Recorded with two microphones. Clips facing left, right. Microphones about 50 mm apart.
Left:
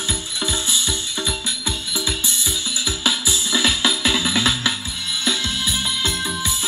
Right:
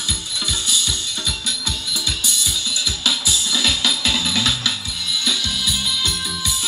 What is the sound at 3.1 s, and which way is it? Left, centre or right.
Music, left.